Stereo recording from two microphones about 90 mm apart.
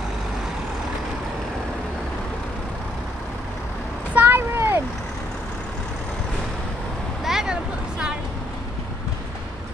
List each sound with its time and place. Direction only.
4.1 s vehicle: 20° right (ahead or behind)
7.2 s vehicle: 5° right (ahead or behind)